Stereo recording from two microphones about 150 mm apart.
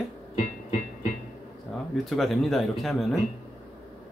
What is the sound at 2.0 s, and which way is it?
Speech, centre (ahead or behind).